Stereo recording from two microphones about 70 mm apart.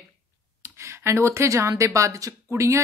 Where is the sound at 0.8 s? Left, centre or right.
Right.